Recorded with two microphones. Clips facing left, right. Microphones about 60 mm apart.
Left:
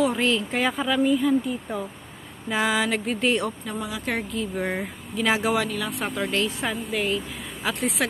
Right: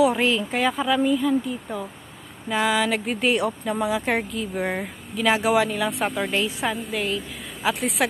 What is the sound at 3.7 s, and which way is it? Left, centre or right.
Speech, right.